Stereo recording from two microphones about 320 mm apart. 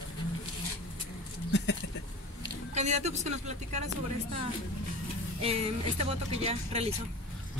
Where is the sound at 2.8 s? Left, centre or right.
Right.